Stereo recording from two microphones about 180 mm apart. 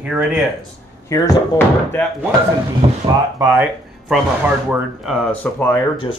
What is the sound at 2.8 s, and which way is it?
Speech, 35° right (ahead or behind).